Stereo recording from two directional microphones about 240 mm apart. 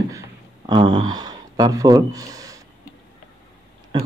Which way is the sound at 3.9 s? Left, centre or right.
Centre.